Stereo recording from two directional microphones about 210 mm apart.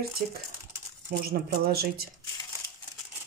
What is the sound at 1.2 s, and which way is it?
Speech, 45° right (ahead or behind).